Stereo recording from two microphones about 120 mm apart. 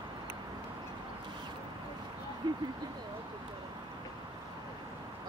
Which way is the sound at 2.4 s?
35° right (ahead or behind).